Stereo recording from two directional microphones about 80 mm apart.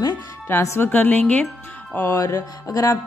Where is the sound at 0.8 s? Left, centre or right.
Left.